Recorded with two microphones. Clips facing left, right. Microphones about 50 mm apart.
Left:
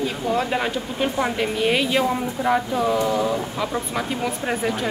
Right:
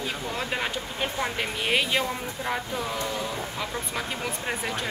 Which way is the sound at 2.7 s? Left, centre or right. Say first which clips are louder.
Left 9 dB; left.